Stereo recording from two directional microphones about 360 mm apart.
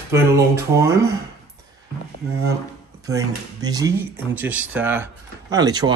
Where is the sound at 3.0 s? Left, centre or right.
Centre.